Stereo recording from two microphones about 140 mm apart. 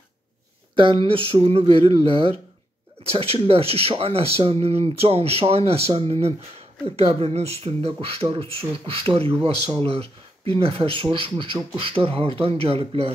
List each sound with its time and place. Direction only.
0.7 s speech: 35° right (ahead or behind)